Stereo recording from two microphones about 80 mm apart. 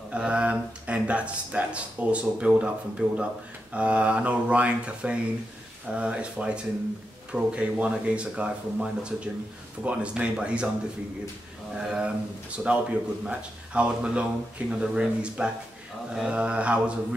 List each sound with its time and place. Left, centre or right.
0.1 s speech: centre
11.7 s speech: centre